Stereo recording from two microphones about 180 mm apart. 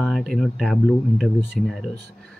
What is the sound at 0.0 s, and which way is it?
Speech, centre (ahead or behind).